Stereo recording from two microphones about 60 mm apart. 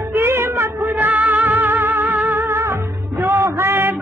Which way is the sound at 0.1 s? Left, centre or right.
Right.